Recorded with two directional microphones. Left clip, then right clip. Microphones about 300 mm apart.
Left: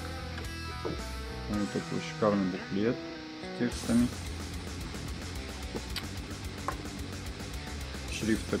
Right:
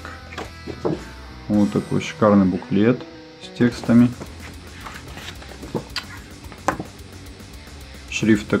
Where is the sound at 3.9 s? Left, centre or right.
Centre.